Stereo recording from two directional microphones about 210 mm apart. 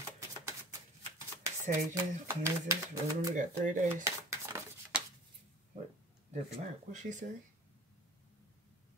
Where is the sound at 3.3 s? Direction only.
35° right (ahead or behind).